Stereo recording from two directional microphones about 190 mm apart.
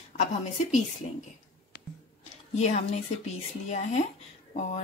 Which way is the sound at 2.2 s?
35° left (ahead or behind).